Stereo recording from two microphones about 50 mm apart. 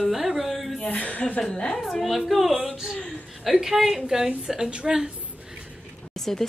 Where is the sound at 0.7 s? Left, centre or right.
Left.